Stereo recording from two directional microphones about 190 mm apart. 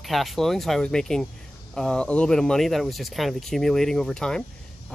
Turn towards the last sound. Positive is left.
turn(degrees=5)  # may be behind; listen again after turning